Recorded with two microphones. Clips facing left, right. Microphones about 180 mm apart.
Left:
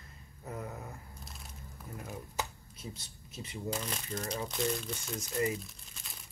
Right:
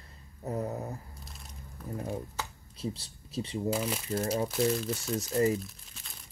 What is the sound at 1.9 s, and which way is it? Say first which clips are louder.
Speech: right 8 dB; 35° right (ahead or behind).